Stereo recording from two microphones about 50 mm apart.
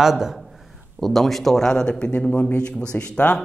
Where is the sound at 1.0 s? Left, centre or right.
Centre; by 3.3 s left.